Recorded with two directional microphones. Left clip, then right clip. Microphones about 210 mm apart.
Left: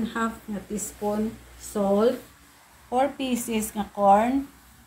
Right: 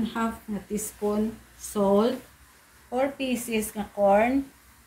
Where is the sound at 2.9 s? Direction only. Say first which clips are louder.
Left 2 dB; 20° left (ahead or behind).